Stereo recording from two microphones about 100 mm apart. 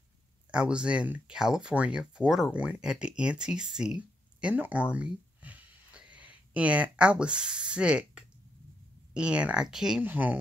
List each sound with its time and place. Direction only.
0.5 s speech: 10° right (ahead or behind)
10.0 s speech: 20° right (ahead or behind)